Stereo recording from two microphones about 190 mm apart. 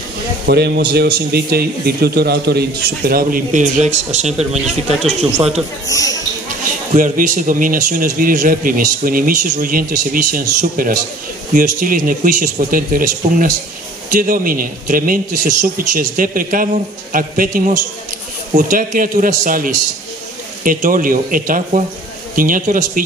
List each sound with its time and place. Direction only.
0.5 s a man's voice: 55° right (ahead or behind); by 5.5 s 35° right (ahead or behind)
5.9 s speech: 20° left (ahead or behind)
6.9 s speech: 45° right (ahead or behind)